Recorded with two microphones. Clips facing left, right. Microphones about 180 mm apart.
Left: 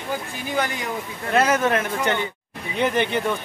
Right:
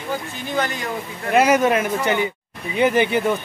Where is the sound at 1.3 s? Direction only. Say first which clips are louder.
Right 4 dB; 10° right (ahead or behind).